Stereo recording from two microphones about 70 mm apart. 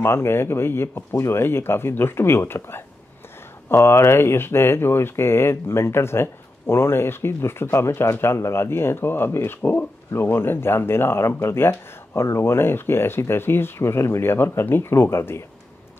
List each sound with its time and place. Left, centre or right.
0.0 s speech: left